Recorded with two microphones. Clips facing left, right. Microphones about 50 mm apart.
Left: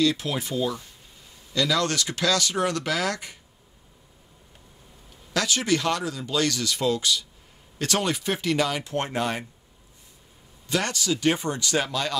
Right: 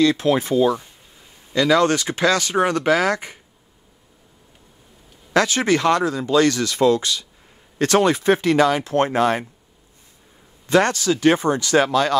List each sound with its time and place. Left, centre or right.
0.0 s speech: right
1.5 s speech: right
5.3 s speech: right
8.8 s speech: right
10.7 s speech: right